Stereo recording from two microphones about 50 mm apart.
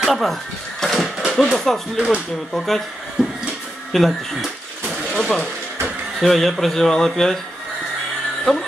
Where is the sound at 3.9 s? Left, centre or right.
Centre.